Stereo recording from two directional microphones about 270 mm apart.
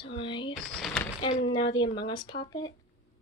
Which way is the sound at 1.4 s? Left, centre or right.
Centre.